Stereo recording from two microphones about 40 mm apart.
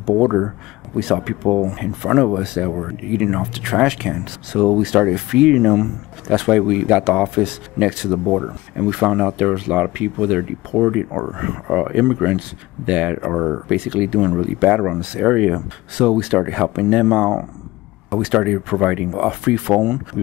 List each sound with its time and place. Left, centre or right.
0.0 s speech: centre
6.9 s speech: right; by 8.5 s centre
8.7 s speech: right
13.3 s speech: centre
13.7 s speech: right